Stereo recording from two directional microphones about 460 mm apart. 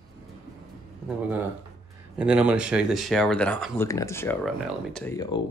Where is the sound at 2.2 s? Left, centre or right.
Centre.